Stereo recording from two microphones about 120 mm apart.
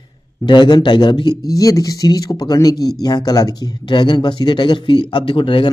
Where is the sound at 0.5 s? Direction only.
40° left (ahead or behind).